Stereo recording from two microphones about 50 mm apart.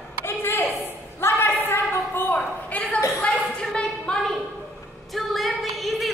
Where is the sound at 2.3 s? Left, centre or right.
Left.